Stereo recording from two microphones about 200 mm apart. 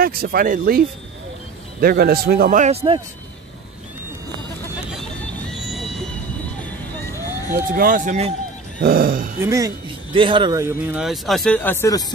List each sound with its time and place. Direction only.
0.0 s a man's voice: 45° right (ahead or behind); by 3.0 s 30° right (ahead or behind)
5.5 s music: centre (ahead or behind)
6.6 s music: 15° left (ahead or behind)
7.5 s a man's voice: 45° right (ahead or behind)
9.4 s speech: 15° right (ahead or behind)
10.6 s speech: 10° right (ahead or behind); by 12.1 s 15° left (ahead or behind)